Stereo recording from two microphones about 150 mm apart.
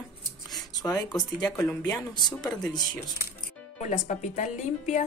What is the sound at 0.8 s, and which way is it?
Speech, 25° left (ahead or behind).